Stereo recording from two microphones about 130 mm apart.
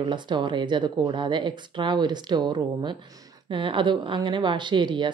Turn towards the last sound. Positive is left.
turn(degrees=-40)  # may be behind; listen again after turning